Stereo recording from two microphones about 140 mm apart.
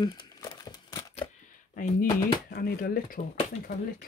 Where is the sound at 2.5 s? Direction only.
90° left.